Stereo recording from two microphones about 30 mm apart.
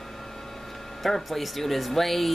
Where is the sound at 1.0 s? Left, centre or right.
Centre.